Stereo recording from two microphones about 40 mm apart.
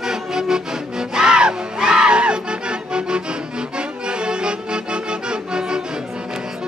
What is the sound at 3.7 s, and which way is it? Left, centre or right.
Music, right.